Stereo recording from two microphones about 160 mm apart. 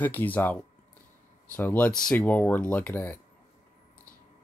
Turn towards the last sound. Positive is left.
turn(degrees=10)  # may be behind; listen again after turning